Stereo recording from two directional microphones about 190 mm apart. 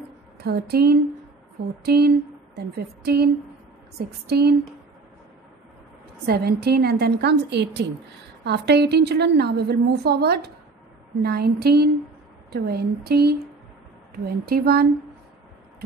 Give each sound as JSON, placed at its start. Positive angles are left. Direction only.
{"t": 0.4, "sound": "a woman's voice", "side_deg": -55}
{"t": 1.9, "sound": "a sound", "side_deg": -55}
{"t": 4.3, "sound": "a woman's voice", "side_deg": -55}
{"t": 6.2, "sound": "a woman's voice", "side_deg": -55}